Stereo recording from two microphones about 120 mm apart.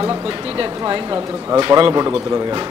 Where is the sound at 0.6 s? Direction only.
45° right (ahead or behind).